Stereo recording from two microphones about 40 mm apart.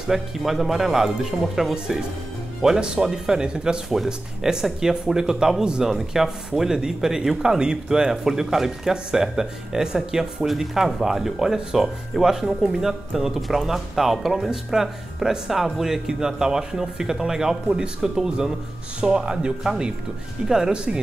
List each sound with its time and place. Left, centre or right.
0.0 s speech: centre